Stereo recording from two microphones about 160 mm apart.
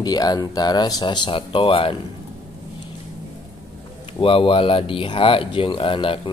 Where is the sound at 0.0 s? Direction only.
25° left (ahead or behind).